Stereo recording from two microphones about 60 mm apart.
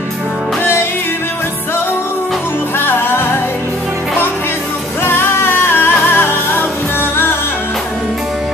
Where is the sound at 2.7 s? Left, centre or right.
Left.